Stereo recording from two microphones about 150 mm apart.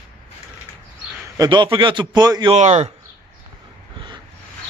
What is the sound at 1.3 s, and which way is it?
A man's voice, 25° right (ahead or behind).